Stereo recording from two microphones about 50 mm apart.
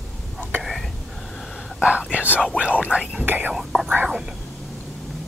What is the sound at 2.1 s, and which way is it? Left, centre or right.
Whispering, right.